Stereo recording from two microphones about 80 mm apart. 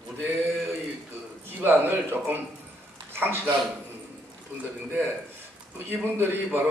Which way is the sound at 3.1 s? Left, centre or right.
Right.